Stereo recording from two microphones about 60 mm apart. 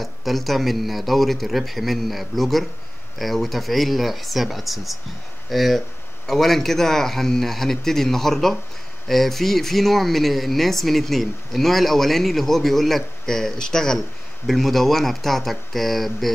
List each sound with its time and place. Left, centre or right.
0.0 s speech: centre